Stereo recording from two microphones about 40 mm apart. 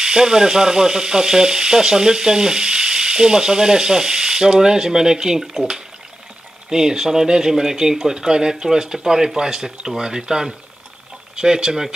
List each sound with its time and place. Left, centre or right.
0.0 s frying: centre
6.7 s frying: centre